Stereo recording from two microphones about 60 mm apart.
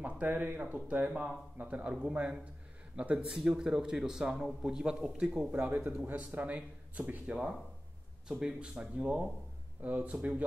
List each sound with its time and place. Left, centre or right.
0.0 s speech: right
1.1 s speech: centre
5.5 s speech: right
8.3 s speech: centre